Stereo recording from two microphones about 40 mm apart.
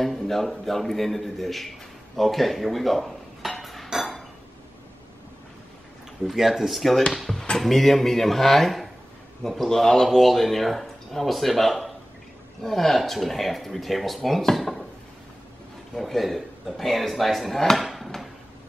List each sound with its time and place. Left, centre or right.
0.0 s speech: centre
2.1 s dishes: centre
6.2 s speech: centre
7.5 s a man's voice: centre
14.4 s dishes: centre
15.9 s speech: centre
17.7 s dishes: centre